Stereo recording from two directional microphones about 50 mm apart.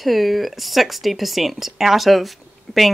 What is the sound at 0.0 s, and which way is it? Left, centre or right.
Speech, centre.